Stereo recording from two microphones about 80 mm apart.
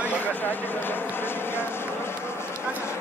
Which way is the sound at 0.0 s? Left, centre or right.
Left.